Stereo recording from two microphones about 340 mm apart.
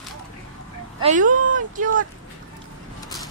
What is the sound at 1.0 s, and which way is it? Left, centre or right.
Speech, right.